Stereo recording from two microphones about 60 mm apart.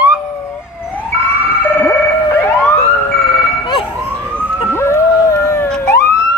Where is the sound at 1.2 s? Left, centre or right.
Left.